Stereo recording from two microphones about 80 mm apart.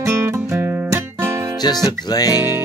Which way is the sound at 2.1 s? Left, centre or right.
Left.